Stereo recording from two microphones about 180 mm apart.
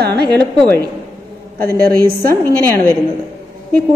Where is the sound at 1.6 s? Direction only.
55° right (ahead or behind).